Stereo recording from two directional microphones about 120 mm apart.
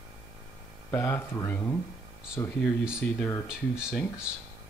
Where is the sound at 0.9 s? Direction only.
20° left (ahead or behind).